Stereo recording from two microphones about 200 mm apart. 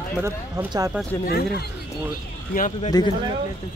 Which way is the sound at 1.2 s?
50° left (ahead or behind).